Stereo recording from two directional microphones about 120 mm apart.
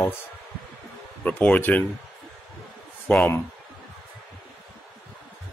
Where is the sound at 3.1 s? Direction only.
10° left (ahead or behind).